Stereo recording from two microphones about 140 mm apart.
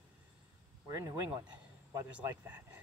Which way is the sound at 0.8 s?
25° right (ahead or behind).